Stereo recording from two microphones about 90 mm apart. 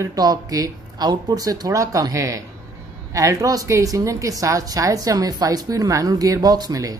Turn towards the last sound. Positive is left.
turn(degrees=-45)  # may be behind; listen again after turning